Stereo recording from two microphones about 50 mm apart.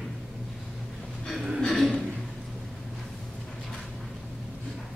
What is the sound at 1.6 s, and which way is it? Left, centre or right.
Speech, centre.